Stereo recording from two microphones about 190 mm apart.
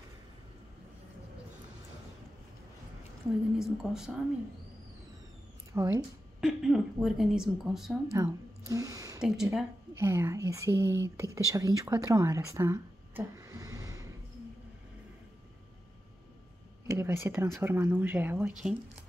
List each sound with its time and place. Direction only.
3.5 s a woman's voice: 5° right (ahead or behind)
5.7 s speech: 15° right (ahead or behind)
6.4 s a woman's voice: centre (ahead or behind)
8.1 s speech: 15° right (ahead or behind)
9.2 s a woman's voice: 5° right (ahead or behind)
9.9 s speech: 15° right (ahead or behind)
16.8 s speech: 15° right (ahead or behind)